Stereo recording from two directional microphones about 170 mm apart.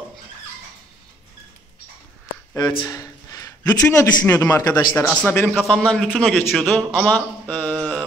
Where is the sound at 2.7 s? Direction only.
20° left (ahead or behind).